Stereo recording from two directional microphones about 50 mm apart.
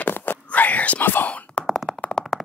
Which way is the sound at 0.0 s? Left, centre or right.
Left.